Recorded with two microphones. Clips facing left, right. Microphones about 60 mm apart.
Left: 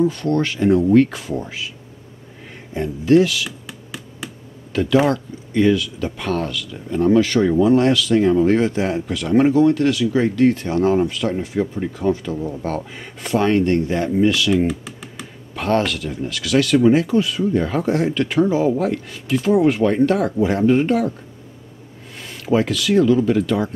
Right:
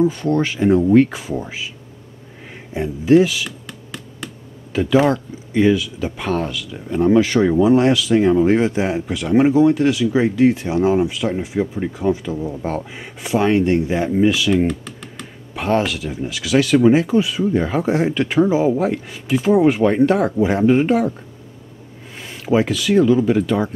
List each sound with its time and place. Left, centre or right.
0.0 s speech: centre
2.7 s speech: centre
3.4 s a sound: centre
4.7 s speech: centre
14.7 s computer keyboard: centre
15.5 s speech: centre
22.1 s speech: centre